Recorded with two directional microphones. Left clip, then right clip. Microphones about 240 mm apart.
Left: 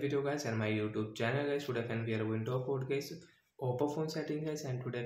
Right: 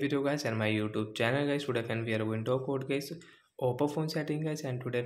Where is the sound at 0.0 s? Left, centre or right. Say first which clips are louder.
Right 4 dB; right.